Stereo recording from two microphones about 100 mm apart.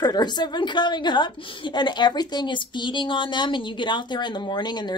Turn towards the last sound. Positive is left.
turn(degrees=45)  # may be behind; listen again after turning